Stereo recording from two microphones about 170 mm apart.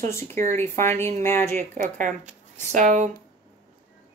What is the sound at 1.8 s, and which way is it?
Speech, 45° right (ahead or behind).